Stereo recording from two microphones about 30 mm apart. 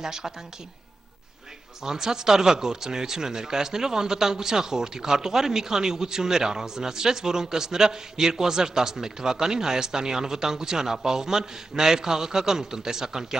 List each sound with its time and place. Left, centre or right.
0.0 s speech: centre
1.8 s speech: centre